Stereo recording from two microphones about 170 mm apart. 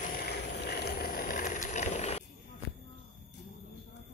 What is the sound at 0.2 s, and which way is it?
Vehicle, 75° left (ahead or behind).